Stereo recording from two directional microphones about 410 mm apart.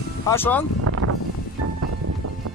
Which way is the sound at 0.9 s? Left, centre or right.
Right.